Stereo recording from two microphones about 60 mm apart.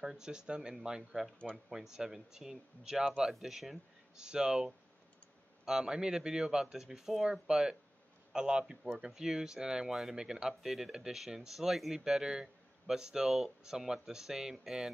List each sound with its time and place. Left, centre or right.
0.0 s speech: centre